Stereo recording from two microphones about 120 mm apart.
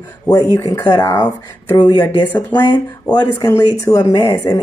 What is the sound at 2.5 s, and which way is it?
Speech, 35° left (ahead or behind).